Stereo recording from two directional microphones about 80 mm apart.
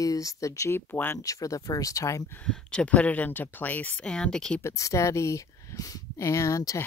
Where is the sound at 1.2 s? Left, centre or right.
Left.